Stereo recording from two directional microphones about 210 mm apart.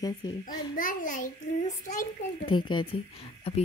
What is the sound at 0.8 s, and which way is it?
Speech, 40° left (ahead or behind).